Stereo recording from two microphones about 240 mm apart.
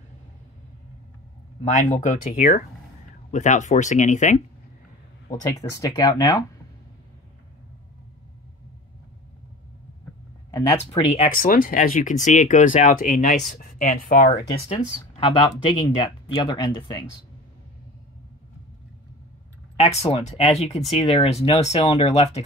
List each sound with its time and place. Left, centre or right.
1.6 s speech: left
5.6 s speech: centre
10.8 s speech: left
15.1 s speech: left
19.8 s speech: left